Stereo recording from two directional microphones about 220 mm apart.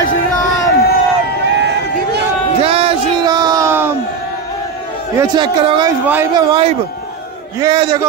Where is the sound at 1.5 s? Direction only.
50° right (ahead or behind).